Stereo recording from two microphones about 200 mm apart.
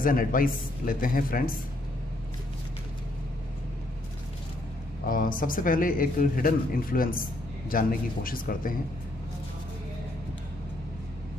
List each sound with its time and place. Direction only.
0.0 s speech: 45° left (ahead or behind)
5.0 s speech: 45° left (ahead or behind)